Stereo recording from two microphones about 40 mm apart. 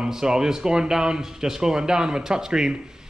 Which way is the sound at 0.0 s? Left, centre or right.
Centre.